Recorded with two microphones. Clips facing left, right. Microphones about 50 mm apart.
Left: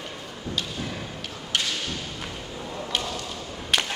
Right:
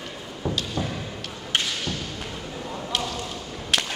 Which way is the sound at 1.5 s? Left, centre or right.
Right.